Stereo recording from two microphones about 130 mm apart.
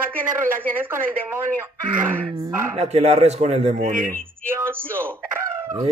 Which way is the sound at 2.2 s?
40° right (ahead or behind).